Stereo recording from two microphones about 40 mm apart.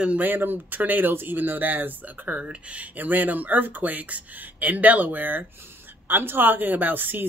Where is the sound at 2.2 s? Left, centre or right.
Right.